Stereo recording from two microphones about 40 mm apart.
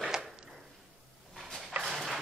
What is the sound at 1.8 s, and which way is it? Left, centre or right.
Clip-clop, centre.